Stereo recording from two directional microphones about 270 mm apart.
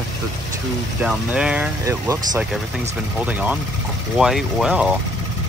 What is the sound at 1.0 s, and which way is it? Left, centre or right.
Speech, centre.